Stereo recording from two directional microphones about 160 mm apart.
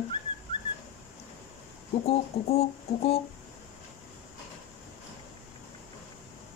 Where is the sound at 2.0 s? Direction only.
40° left (ahead or behind).